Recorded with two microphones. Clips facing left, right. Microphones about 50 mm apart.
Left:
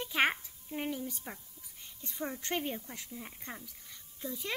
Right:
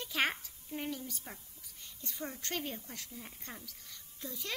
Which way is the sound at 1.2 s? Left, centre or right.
Centre.